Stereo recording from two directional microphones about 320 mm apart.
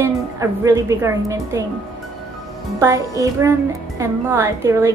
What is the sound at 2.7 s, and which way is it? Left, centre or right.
A woman's voice, centre.